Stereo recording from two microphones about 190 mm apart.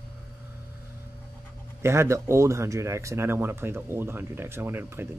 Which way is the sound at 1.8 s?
15° right (ahead or behind).